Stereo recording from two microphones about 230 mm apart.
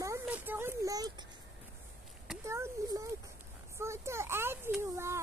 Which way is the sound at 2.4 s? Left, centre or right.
Centre.